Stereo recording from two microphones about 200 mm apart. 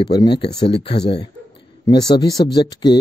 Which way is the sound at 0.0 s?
20° left (ahead or behind).